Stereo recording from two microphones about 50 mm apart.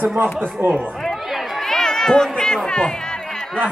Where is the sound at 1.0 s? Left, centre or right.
Centre.